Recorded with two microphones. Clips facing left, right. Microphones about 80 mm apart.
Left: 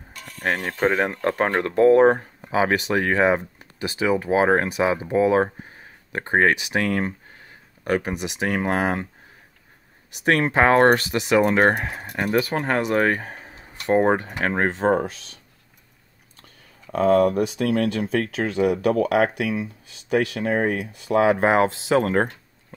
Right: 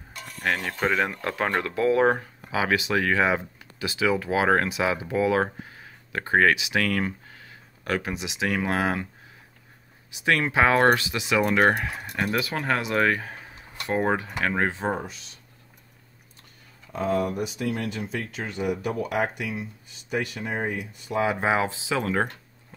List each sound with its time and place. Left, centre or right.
0.4 s speech: left
6.5 s speech: left
6.8 s speech: left
8.1 s speech: left
10.2 s speech: left
11.0 s speech: left
12.5 s speech: left
17.1 s speech: left
19.0 s speech: left
20.1 s speech: left